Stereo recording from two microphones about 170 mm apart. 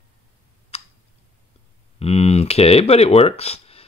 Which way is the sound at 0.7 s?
40° left (ahead or behind).